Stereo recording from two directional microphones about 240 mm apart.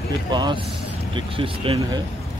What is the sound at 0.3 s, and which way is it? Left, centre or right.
Speech, centre.